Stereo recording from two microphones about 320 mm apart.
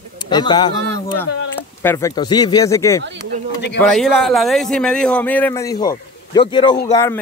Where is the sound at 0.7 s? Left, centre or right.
Right.